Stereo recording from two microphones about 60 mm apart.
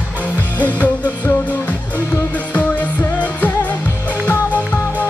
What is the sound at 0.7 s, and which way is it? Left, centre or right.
Music, left.